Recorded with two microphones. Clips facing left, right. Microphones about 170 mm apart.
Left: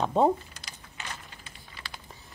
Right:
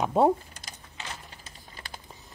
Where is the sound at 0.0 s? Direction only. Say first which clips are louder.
Right 1 dB; 10° right (ahead or behind).